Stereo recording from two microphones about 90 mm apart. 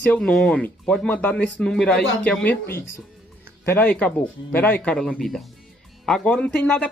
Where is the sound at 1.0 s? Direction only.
15° left (ahead or behind).